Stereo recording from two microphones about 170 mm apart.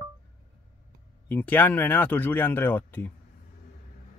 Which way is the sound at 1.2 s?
10° left (ahead or behind).